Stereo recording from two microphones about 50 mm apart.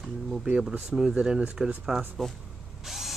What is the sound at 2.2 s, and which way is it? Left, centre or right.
Speech, centre.